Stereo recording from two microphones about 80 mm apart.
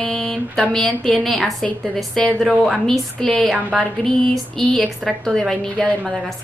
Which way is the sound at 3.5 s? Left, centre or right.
Centre.